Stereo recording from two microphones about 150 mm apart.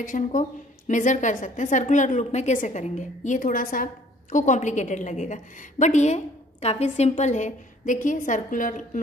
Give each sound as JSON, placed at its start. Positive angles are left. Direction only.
{"t": 0.0, "sound": "a woman's voice", "side_deg": 60}